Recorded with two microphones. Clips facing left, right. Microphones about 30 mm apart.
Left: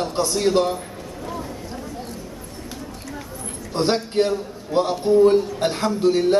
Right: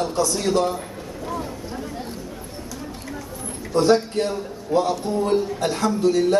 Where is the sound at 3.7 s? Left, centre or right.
Left.